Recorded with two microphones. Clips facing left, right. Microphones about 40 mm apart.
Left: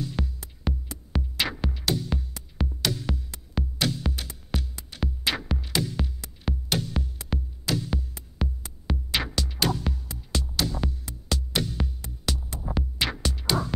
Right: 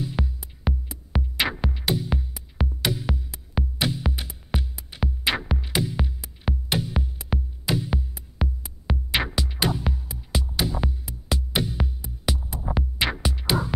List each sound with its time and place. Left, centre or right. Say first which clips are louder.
0.0 s music: right 2 dB; centre